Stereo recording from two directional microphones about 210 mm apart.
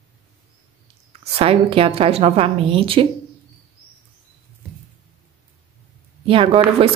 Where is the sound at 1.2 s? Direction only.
25° right (ahead or behind).